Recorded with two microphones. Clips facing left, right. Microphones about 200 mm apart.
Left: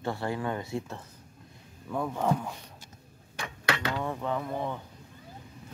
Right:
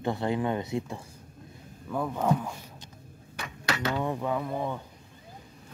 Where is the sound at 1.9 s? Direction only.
Centre (ahead or behind).